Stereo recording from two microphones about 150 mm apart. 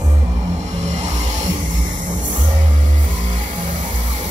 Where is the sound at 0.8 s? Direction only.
50° right (ahead or behind).